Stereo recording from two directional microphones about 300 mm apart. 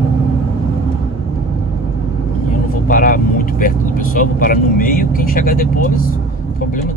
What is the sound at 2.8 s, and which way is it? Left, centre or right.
Vehicle, left.